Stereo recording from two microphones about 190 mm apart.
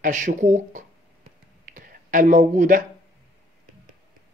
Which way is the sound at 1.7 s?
45° right (ahead or behind).